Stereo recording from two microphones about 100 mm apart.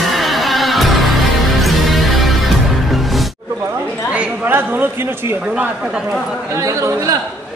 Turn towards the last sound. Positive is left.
turn(degrees=-35)  # may be behind; listen again after turning